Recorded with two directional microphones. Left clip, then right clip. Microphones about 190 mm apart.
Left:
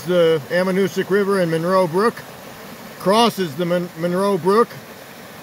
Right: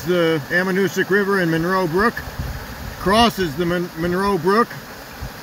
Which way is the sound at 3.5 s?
15° left (ahead or behind).